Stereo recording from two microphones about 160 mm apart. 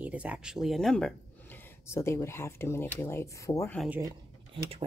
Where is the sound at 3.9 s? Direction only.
15° right (ahead or behind).